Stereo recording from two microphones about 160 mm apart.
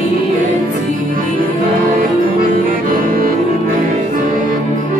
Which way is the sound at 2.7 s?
65° right (ahead or behind).